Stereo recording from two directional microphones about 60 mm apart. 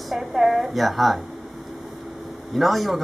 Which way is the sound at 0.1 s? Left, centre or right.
Centre.